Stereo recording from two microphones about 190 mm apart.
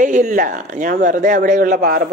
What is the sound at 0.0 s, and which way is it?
Speech, 40° right (ahead or behind).